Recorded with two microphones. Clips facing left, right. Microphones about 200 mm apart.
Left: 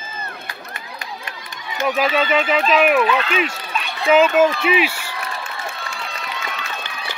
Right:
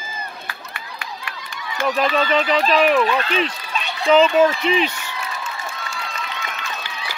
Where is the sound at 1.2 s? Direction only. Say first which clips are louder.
Right 1 dB; 20° left (ahead or behind).